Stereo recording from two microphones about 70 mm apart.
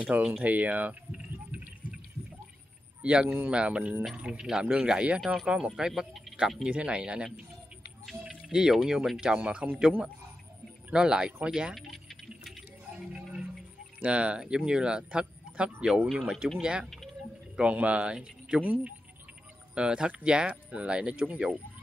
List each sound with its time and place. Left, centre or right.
0.2 s speech: centre
0.5 s speech: right
1.1 s a sound: centre
3.0 s speech: centre
10.9 s speech: centre
11.7 s a sound: centre
12.9 s music: centre
14.0 s speech: centre
18.6 s speech: right
19.7 s speech: centre